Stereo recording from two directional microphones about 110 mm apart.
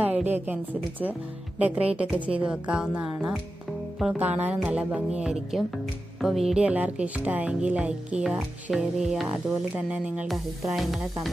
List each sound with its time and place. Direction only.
0.0 s speech: 15° right (ahead or behind)
1.6 s speech: 10° right (ahead or behind)